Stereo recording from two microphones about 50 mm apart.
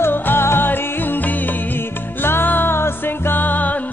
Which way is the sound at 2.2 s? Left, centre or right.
Left.